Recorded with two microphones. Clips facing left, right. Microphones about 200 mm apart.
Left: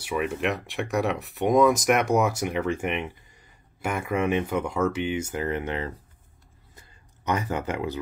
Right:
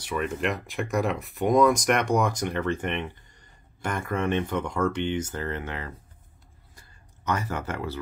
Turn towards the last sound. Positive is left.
turn(degrees=15)  # may be behind; listen again after turning